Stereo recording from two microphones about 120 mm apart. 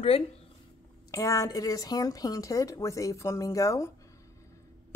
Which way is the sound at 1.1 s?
25° left (ahead or behind).